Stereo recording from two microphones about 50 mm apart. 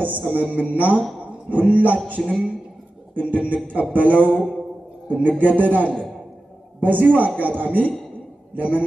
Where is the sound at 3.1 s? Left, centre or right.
Right.